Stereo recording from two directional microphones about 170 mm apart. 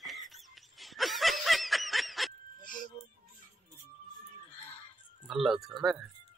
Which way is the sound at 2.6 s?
50° left (ahead or behind).